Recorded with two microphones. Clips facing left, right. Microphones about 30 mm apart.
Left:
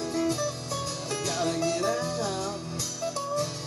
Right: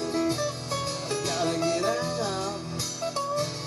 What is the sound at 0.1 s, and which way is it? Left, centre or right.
Music, right.